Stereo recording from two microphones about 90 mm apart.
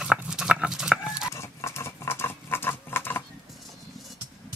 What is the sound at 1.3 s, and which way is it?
Patter, 30° left (ahead or behind).